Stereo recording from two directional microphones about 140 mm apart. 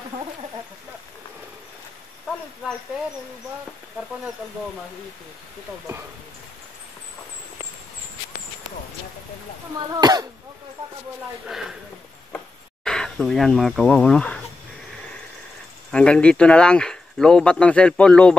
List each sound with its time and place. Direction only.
9.8 s speech: 30° right (ahead or behind)
12.8 s speech: 5° left (ahead or behind)
15.9 s speech: 5° left (ahead or behind)